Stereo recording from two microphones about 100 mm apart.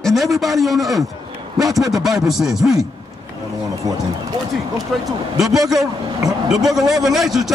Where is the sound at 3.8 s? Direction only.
40° right (ahead or behind).